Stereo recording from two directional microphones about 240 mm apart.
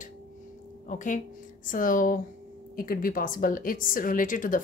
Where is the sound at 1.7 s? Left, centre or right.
Left.